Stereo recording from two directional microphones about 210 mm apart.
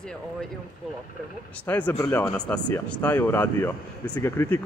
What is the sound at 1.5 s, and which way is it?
Speech, 5° left (ahead or behind).